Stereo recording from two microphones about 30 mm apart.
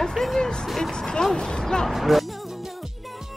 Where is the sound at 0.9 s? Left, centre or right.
Left.